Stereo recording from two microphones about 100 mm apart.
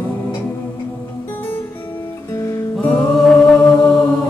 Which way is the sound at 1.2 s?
20° left (ahead or behind).